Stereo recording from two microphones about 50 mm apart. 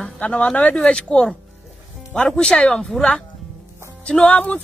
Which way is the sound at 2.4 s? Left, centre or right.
Centre.